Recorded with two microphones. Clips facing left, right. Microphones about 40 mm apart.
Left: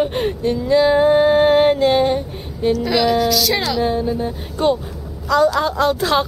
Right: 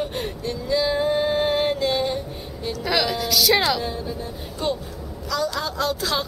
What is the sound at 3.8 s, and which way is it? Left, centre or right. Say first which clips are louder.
Speech: left 10 dB; left.